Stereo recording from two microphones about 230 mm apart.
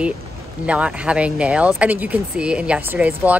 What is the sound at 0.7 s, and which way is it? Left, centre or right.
Speech, centre.